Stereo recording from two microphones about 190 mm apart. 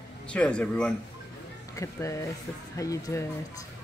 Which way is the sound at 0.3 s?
5° left (ahead or behind).